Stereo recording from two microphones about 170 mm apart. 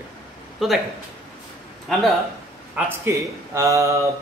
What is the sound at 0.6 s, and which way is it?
Speech, centre (ahead or behind).